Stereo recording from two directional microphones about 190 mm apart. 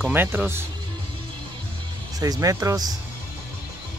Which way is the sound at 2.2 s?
20° right (ahead or behind).